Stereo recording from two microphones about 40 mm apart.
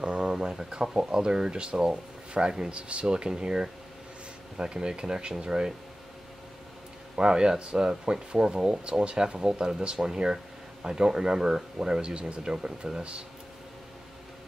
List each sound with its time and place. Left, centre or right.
0.0 s a sound: right
0.9 s speech: centre
7.2 s speech: right